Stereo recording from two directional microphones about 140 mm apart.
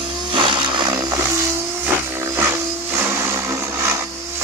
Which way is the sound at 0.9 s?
25° right (ahead or behind).